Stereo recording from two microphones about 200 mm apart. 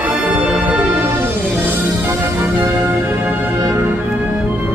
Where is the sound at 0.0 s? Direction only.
5° right (ahead or behind).